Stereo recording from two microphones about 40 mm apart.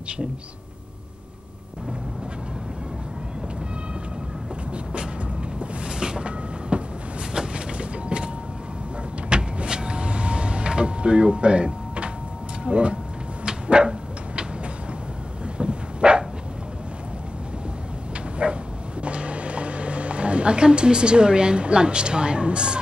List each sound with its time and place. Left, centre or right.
5.6 s a sound: right
7.3 s vehicle: right
9.3 s vehicle: right
12.6 s speech: right
13.5 s dog: right
15.5 s dog: right
18.4 s dog: right
19.0 s a sound: right